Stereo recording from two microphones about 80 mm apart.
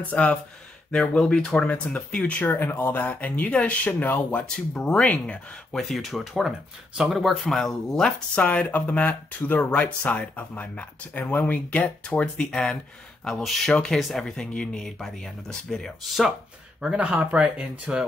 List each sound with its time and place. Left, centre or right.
0.0 s speech: centre
2.4 s speech: left; by 8.1 s centre
8.4 s speech: centre
16.8 s speech: centre